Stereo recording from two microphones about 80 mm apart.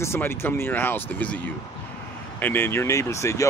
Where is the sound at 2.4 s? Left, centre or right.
Left.